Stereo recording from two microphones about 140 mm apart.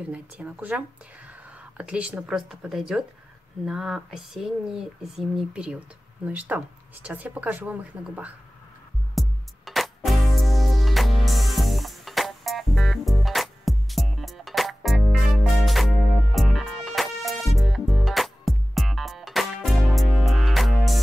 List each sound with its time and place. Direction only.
0.1 s speech: 10° right (ahead or behind)
9.1 s music: centre (ahead or behind)